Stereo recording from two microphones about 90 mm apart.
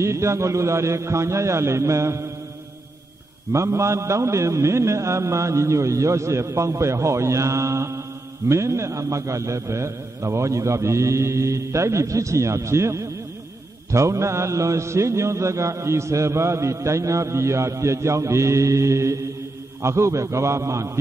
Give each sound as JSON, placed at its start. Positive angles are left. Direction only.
{"t": 0.0, "sound": "mantra", "side_deg": -30}
{"t": 3.5, "sound": "mantra", "side_deg": -35}